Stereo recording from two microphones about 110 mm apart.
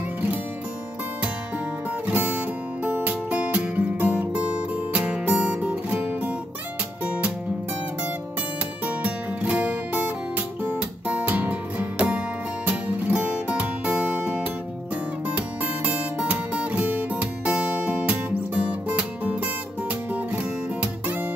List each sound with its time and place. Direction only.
2.0 s music: 15° right (ahead or behind)
8.8 s guitar: 15° right (ahead or behind)
12.6 s music: 15° right (ahead or behind)
20.8 s guitar: 15° right (ahead or behind)